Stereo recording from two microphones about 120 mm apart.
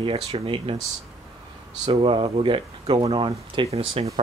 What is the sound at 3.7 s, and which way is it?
Speech, 55° right (ahead or behind).